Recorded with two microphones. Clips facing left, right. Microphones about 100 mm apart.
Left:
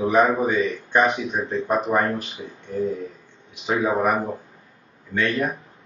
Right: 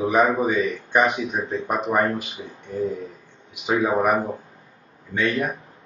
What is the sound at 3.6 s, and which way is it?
Speech, 15° right (ahead or behind).